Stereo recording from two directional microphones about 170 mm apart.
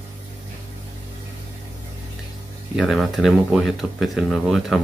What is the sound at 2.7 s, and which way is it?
Speech, centre (ahead or behind).